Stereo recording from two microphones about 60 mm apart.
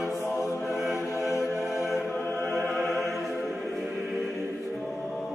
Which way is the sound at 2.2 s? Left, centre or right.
Left.